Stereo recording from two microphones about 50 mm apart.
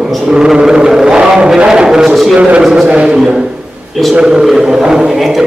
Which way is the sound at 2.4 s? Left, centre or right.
Right.